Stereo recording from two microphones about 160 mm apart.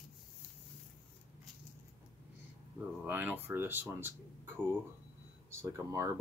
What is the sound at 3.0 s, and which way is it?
Speech, 10° right (ahead or behind).